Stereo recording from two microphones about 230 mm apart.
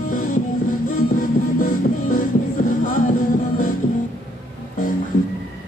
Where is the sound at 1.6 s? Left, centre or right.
Left.